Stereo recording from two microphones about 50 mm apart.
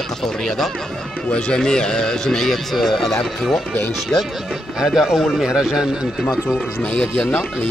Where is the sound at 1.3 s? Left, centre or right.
Centre.